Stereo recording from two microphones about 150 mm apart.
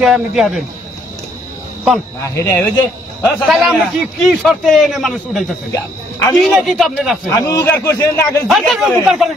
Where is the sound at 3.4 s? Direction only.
Centre (ahead or behind).